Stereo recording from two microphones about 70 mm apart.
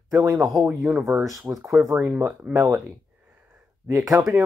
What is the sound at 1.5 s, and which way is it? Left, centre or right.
Speech, right.